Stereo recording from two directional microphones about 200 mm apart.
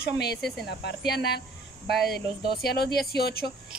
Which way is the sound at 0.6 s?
55° left (ahead or behind).